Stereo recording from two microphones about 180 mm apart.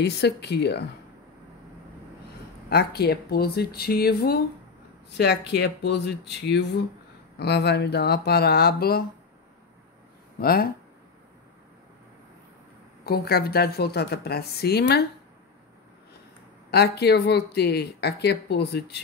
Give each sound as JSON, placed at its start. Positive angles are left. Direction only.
{"t": 0.0, "sound": "speech", "side_deg": 65}
{"t": 2.7, "sound": "speech", "side_deg": 65}
{"t": 10.4, "sound": "speech", "side_deg": 55}
{"t": 13.0, "sound": "speech", "side_deg": 60}
{"t": 16.7, "sound": "speech", "side_deg": 65}